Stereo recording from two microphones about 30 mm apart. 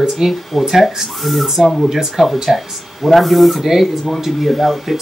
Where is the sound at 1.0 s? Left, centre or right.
Centre.